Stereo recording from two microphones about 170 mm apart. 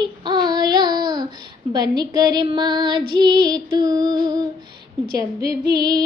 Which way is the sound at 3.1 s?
25° right (ahead or behind).